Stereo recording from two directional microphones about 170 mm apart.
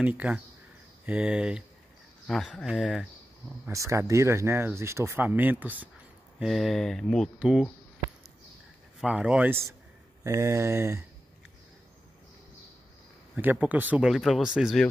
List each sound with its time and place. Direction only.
0.0 s speech: 10° right (ahead or behind)
3.6 s speech: 15° right (ahead or behind)
6.4 s speech: centre (ahead or behind)
9.0 s speech: 5° right (ahead or behind)
13.4 s speech: 10° right (ahead or behind)